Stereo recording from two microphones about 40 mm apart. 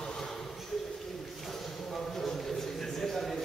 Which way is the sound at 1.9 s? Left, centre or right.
Centre.